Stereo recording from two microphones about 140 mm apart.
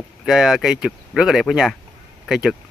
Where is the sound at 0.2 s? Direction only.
5° right (ahead or behind).